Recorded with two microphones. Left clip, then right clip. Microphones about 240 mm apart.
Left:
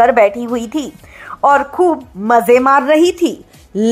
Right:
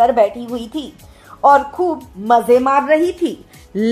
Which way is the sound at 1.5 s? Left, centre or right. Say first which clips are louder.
Left 1 dB; left.